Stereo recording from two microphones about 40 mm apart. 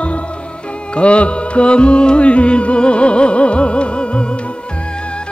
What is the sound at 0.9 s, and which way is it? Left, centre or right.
Music, left.